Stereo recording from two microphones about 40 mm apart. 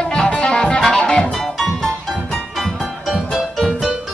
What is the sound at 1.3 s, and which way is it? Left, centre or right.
Music, centre.